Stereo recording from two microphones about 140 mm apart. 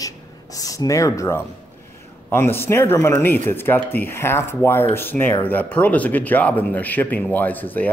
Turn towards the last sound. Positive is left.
turn(degrees=10)  # may be behind; listen again after turning